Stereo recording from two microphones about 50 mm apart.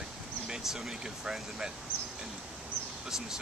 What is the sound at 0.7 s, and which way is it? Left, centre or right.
Speech, centre.